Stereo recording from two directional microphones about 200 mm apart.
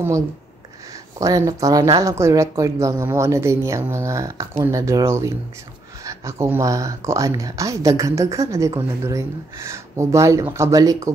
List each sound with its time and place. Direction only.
1.1 s speech: 15° right (ahead or behind)